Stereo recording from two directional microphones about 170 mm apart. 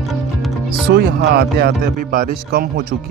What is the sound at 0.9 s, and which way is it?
Speech, 70° right (ahead or behind).